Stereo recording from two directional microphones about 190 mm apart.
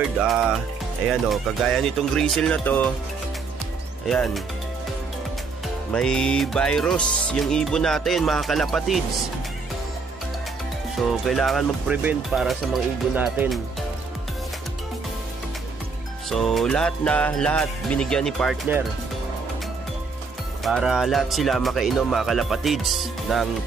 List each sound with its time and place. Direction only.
0.2 s speech: 5° right (ahead or behind)
4.1 s speech: 5° left (ahead or behind)
5.9 s speech: 5° left (ahead or behind)
11.1 s speech: centre (ahead or behind)
16.3 s speech: centre (ahead or behind)
20.6 s speech: centre (ahead or behind)